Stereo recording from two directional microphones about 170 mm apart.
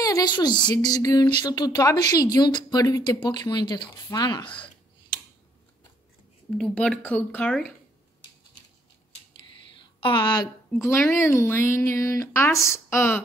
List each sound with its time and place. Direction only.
0.0 s a sound: 20° left (ahead or behind)
0.4 s speech: 25° left (ahead or behind)
6.6 s speech: 5° left (ahead or behind)
9.9 s a woman's voice: 30° left (ahead or behind)
11.1 s speech: 15° left (ahead or behind)